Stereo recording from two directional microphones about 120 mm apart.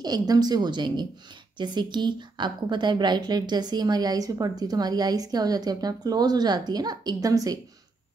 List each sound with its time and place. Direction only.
0.0 s a woman's voice: 35° right (ahead or behind)